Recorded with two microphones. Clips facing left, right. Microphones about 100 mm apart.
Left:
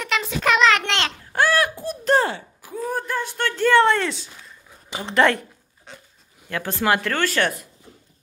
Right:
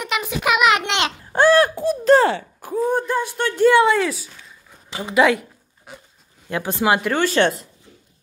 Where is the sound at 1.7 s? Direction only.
90° right.